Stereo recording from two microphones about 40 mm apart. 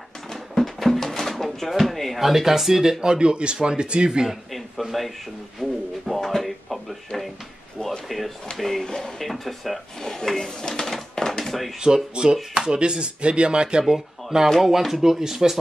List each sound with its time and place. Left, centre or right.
0.3 s drawer open or close: centre
2.1 s speech: centre; by 4.3 s right
5.6 s a sound: centre
8.5 s speech: centre
10.1 s pigeon: centre
11.8 s speech: centre
13.8 s speech: centre